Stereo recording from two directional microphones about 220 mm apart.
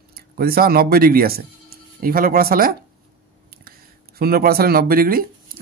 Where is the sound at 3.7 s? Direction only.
45° right (ahead or behind).